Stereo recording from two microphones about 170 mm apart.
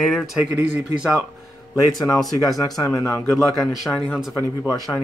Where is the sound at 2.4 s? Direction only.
20° left (ahead or behind).